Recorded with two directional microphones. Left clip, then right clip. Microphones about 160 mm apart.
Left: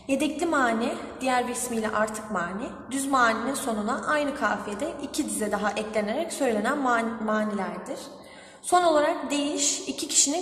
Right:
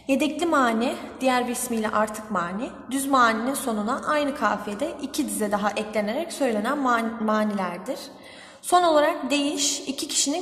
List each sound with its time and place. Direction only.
0.1 s a woman's voice: 30° right (ahead or behind)